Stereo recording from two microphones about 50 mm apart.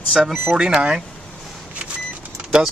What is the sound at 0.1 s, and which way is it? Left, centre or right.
Speech, centre.